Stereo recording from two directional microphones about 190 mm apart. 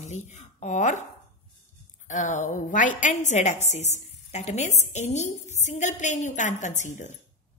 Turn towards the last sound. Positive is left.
turn(degrees=40)  # may be behind; listen again after turning